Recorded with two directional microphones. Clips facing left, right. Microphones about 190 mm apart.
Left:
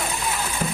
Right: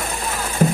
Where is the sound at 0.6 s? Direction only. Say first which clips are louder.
Right 12 dB; 45° right (ahead or behind).